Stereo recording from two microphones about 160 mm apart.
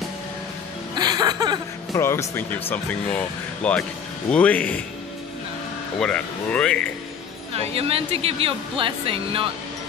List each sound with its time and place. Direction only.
0.9 s music: 25° right (ahead or behind)
2.0 s speech: 15° left (ahead or behind)
5.9 s speech: 5° left (ahead or behind)
7.5 s speech: 40° right (ahead or behind)